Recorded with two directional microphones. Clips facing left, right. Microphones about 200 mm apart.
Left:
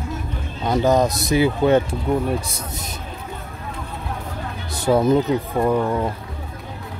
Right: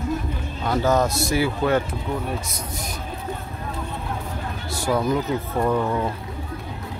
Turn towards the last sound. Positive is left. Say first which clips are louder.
# left 2 dB
turn(degrees=15)  # may be behind; listen again after turning